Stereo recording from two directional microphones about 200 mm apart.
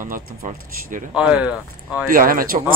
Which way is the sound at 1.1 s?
5° right (ahead or behind).